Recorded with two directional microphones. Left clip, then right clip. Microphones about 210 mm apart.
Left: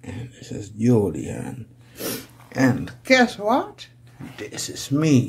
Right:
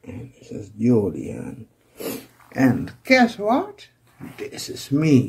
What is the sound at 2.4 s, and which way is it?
Speech, 15° left (ahead or behind).